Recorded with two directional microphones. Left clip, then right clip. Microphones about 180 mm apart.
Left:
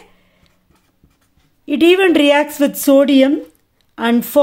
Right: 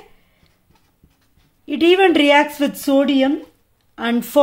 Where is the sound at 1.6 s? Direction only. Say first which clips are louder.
Left 2 dB; 25° left (ahead or behind).